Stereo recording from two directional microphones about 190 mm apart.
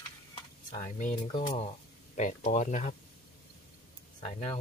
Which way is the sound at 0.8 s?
40° left (ahead or behind).